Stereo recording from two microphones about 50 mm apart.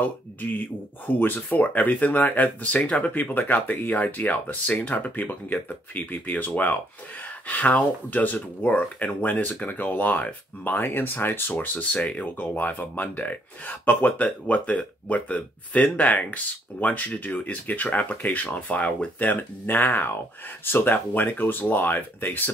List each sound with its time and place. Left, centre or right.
0.0 s speech: left